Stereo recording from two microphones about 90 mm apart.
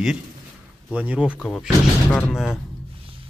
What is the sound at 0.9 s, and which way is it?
Speech, 15° right (ahead or behind).